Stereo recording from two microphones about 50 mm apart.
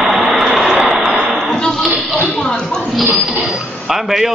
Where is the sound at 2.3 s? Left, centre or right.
Centre.